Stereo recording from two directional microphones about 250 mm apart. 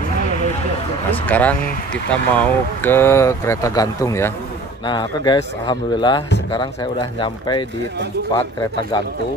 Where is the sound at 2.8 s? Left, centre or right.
Centre.